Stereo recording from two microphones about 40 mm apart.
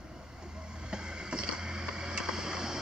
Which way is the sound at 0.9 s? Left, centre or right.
Right.